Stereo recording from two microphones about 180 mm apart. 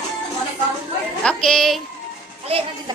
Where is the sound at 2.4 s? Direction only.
35° right (ahead or behind).